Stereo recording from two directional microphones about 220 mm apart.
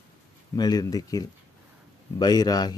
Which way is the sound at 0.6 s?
15° left (ahead or behind).